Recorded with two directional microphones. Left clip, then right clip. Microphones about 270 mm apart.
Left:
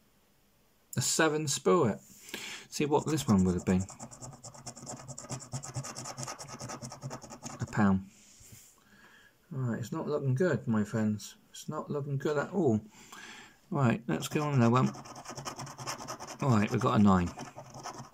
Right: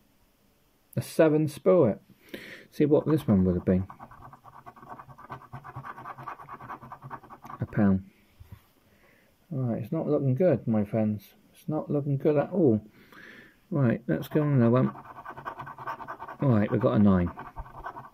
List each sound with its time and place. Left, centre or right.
0.9 s speech: centre
7.4 s scratch: centre
9.6 s speech: centre
16.3 s speech: centre